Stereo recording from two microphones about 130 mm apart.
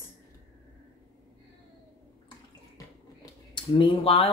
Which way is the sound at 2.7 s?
35° left (ahead or behind).